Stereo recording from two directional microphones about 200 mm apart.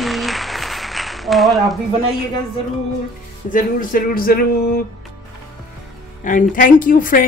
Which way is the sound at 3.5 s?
45° left (ahead or behind).